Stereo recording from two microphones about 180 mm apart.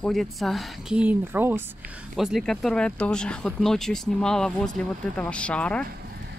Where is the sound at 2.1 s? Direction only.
Centre (ahead or behind).